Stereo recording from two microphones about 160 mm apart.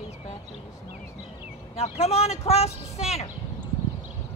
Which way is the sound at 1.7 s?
40° left (ahead or behind).